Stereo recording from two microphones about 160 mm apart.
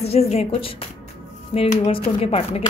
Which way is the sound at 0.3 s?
35° left (ahead or behind).